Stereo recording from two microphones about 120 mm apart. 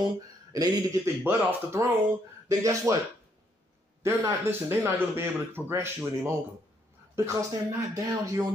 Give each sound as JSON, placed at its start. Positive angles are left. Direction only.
{"t": 0.0, "sound": "speech", "side_deg": -35}
{"t": 4.0, "sound": "speech", "side_deg": -20}